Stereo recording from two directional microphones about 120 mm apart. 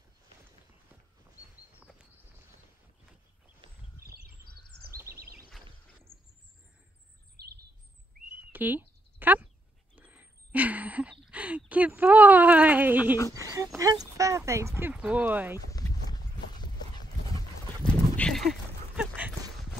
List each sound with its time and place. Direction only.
8.5 s a sound: 15° right (ahead or behind)
13.3 s speech: 25° right (ahead or behind)
15.0 s speech: 10° right (ahead or behind)
15.7 s clip-clop: 30° left (ahead or behind)
17.8 s horse: 10° left (ahead or behind)
18.9 s clip-clop: 10° right (ahead or behind)